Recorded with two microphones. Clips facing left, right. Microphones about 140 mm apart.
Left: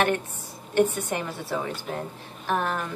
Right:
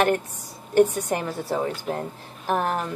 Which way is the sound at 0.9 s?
40° right (ahead or behind).